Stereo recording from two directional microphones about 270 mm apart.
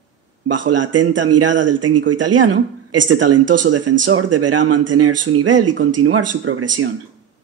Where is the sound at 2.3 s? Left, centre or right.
Right.